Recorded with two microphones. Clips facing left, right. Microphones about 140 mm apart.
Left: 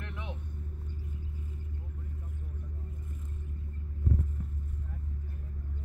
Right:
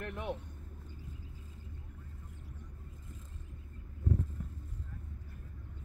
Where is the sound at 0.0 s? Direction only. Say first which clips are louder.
Right 4 dB; 45° right (ahead or behind).